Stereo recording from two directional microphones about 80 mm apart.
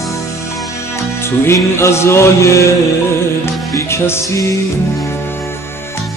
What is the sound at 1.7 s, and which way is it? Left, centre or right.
Speech, left.